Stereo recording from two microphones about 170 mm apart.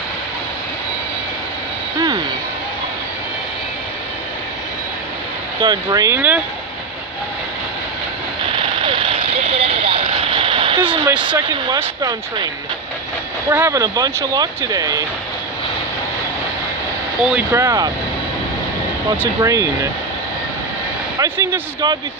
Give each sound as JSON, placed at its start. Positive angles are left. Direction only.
{"t": 5.6, "sound": "speech", "side_deg": -25}
{"t": 8.5, "sound": "vehicle", "side_deg": -30}
{"t": 11.2, "sound": "speech", "side_deg": -25}
{"t": 13.5, "sound": "speech", "side_deg": -20}
{"t": 17.2, "sound": "speech", "side_deg": -5}
{"t": 17.5, "sound": "speech", "side_deg": -20}
{"t": 19.0, "sound": "speech", "side_deg": -20}
{"t": 21.2, "sound": "a sound", "side_deg": -20}